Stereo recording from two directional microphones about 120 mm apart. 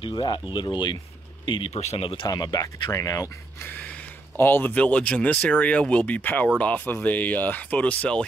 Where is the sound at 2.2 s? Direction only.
35° left (ahead or behind).